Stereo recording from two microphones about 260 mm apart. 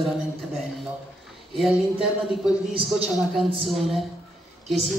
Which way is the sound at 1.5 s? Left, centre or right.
Centre.